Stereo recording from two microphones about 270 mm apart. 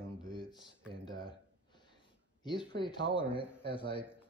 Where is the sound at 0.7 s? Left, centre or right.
Centre.